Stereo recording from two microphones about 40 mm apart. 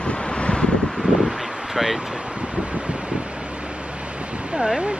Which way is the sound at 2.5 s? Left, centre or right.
Right.